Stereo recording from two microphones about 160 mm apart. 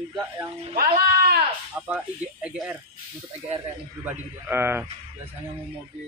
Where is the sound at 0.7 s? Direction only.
65° right (ahead or behind).